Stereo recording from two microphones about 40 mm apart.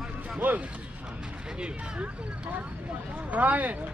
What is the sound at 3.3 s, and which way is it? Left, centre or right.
Speech, right.